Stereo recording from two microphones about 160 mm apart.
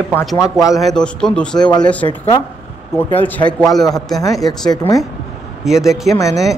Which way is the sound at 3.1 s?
10° left (ahead or behind).